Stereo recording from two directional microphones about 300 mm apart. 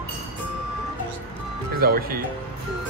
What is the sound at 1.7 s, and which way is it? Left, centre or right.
Speech, right.